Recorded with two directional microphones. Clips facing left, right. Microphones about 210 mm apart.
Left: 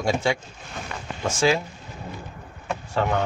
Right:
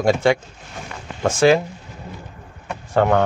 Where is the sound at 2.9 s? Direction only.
60° right (ahead or behind).